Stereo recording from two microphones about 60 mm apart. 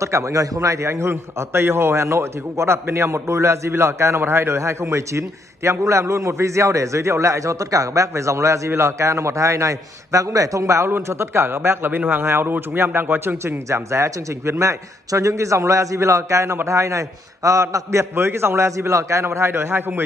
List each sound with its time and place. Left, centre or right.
0.0 s a man's voice: right
10.9 s a man's voice: right
12.0 s a man's voice: right
13.7 s a man's voice: right